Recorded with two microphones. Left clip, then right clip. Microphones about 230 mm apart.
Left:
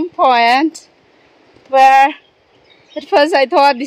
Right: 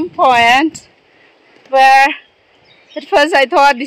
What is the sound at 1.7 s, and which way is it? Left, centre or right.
A woman's voice, centre.